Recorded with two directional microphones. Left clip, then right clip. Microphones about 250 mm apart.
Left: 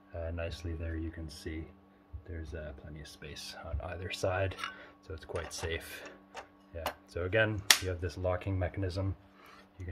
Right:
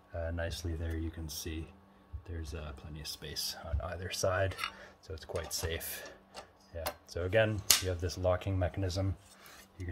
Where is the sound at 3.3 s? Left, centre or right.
Centre.